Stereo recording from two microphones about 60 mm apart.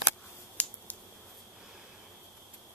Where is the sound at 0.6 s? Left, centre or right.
Left.